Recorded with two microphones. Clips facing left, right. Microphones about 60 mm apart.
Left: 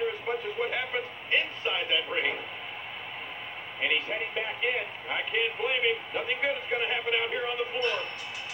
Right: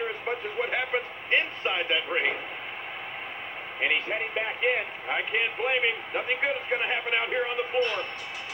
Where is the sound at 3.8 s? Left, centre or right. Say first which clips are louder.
Right 2 dB; right.